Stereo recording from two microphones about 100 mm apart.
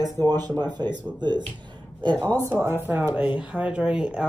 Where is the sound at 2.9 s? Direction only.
25° right (ahead or behind).